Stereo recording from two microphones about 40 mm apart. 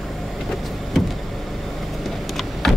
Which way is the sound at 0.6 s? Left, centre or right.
Centre.